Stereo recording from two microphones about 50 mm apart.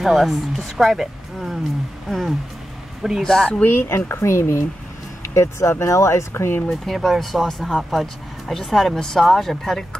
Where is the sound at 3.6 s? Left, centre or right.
Left.